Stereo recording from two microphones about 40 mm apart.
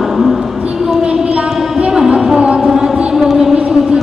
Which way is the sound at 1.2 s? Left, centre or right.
Right.